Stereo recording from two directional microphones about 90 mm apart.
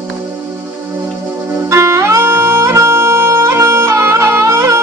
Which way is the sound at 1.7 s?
30° right (ahead or behind).